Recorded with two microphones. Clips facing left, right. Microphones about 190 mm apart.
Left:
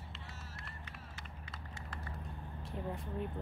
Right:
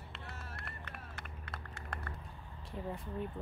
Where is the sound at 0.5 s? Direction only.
60° right (ahead or behind).